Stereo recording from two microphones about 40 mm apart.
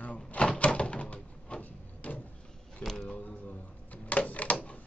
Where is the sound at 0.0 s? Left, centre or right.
Left.